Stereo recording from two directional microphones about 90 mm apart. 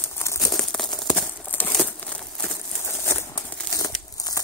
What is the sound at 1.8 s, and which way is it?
Crumpling, 10° left (ahead or behind).